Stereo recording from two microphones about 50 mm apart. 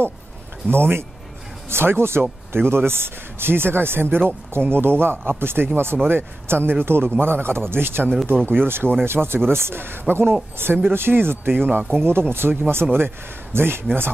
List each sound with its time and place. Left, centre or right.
0.7 s a man's voice: right